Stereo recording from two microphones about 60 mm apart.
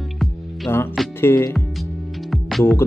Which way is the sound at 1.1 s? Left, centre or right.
Left.